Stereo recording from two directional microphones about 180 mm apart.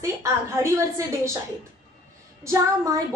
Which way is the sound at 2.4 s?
20° right (ahead or behind).